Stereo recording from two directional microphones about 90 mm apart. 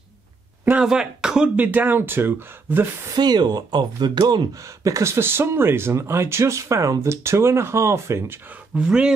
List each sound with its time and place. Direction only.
0.7 s speech: 10° right (ahead or behind)
1.6 s speech: 20° right (ahead or behind)
3.2 s speech: 50° right (ahead or behind)
4.6 s speech: 40° right (ahead or behind)
8.5 s speech: 10° right (ahead or behind)